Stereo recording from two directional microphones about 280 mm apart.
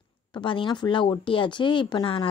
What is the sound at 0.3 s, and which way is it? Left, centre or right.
A woman's voice, centre.